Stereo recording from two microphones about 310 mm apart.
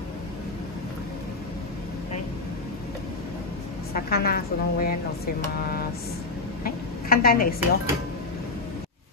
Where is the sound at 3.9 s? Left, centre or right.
Left.